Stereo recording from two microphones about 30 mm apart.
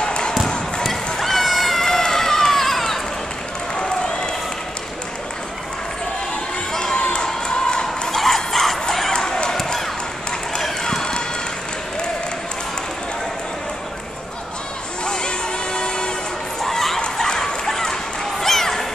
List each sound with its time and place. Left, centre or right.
0.0 s basketball bounce: left
1.2 s a sound: centre
1.9 s run: centre
6.7 s crowd: centre
7.0 s crowd: left
8.1 s bow-wow: centre
9.1 s basketball bounce: centre
10.9 s run: left
15.0 s a sound: left
16.6 s bow-wow: centre
18.4 s a sound: centre